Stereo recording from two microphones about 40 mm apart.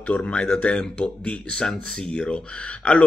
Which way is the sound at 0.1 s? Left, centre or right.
Left.